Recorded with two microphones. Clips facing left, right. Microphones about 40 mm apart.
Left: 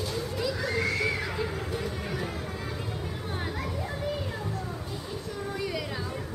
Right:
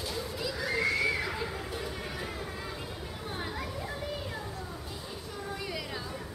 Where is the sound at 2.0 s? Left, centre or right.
Centre.